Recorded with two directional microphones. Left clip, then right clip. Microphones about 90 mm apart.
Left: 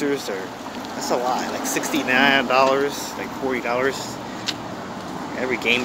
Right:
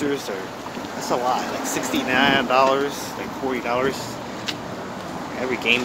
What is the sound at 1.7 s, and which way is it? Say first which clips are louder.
Speech: left 2 dB; 5° right (ahead or behind).